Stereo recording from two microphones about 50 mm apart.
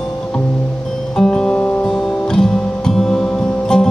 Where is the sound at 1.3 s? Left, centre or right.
Centre.